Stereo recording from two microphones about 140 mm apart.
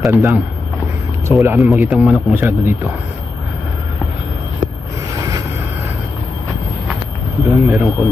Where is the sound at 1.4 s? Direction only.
20° right (ahead or behind).